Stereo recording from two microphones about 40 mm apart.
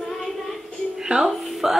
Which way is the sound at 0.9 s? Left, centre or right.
Centre.